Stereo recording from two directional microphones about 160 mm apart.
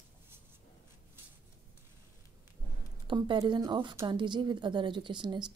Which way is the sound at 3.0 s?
30° right (ahead or behind).